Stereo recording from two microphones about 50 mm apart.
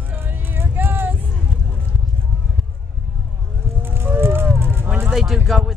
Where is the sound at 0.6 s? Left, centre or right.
Right.